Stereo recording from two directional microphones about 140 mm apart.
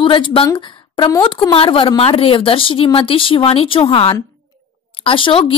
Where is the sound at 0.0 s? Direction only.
35° left (ahead or behind).